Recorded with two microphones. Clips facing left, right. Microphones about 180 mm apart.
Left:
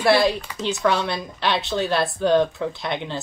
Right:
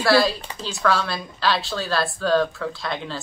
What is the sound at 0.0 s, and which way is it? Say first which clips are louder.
Speech: left 1 dB; 20° left (ahead or behind).